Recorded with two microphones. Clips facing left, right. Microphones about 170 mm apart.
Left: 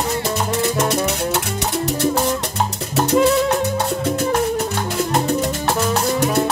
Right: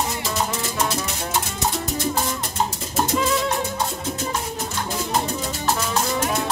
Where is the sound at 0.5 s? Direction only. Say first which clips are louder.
Left 7 dB; 65° left (ahead or behind).